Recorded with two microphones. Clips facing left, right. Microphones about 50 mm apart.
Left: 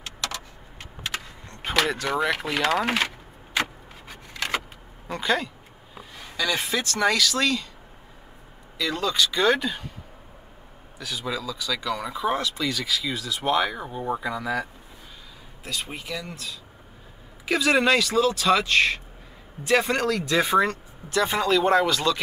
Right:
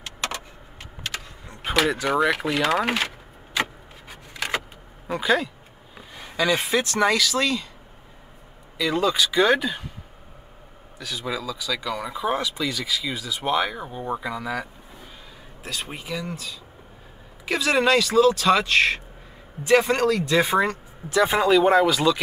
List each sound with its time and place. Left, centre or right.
1.8 s speech: centre
4.3 s vehicle: centre
5.0 s speech: centre
6.3 s speech: right
6.9 s speech: centre
8.7 s speech: centre
11.0 s speech: centre
17.5 s speech: centre